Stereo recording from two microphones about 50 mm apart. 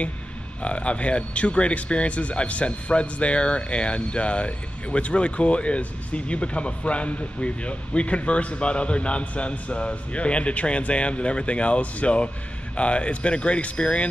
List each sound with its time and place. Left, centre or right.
0.6 s speech: left